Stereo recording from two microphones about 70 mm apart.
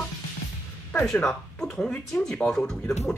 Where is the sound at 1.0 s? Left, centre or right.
Centre.